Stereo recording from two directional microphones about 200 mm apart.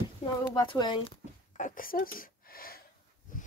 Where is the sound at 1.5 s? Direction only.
40° left (ahead or behind).